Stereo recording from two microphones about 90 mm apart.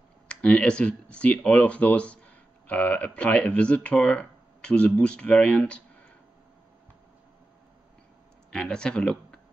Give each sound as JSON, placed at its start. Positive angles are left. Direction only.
{"t": 0.3, "sound": "speech", "side_deg": 10}
{"t": 8.5, "sound": "speech", "side_deg": 10}